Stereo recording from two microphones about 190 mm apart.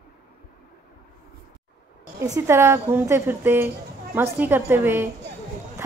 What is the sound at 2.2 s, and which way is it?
Speech, 15° right (ahead or behind).